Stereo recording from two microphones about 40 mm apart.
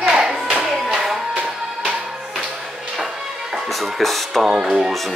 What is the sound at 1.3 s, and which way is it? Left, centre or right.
Music, right.